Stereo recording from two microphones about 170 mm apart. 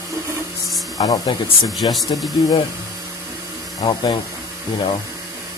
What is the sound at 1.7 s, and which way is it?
Speech, centre (ahead or behind).